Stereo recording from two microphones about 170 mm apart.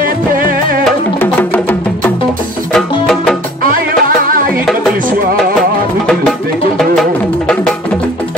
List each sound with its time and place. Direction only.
1.2 s music: 10° left (ahead or behind)
4.2 s music: 55° right (ahead or behind)
7.0 s music: 5° left (ahead or behind)